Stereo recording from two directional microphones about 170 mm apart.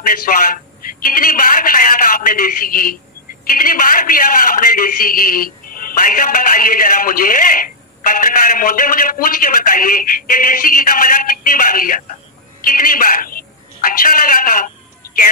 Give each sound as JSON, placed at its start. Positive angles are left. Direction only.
{"t": 0.3, "sound": "a man's voice", "side_deg": 50}